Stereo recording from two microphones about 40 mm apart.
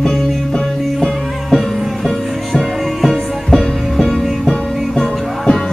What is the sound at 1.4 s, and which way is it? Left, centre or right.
Music, centre.